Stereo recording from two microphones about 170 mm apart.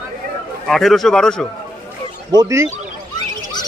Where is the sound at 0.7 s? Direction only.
Centre (ahead or behind).